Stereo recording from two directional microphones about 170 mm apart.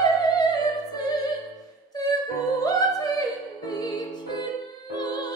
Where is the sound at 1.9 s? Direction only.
20° left (ahead or behind).